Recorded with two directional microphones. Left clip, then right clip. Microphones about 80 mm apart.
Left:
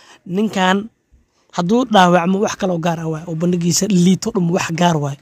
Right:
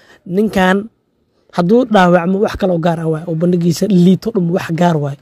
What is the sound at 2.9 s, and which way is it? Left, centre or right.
Speech, right.